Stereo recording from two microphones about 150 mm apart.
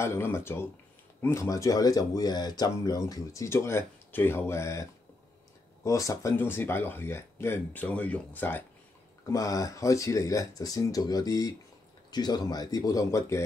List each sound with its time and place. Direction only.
0.0 s speech: 15° left (ahead or behind)
5.9 s speech: 20° left (ahead or behind)